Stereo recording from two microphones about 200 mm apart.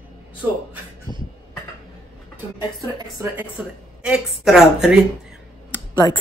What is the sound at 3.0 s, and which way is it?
A woman's voice, 15° right (ahead or behind).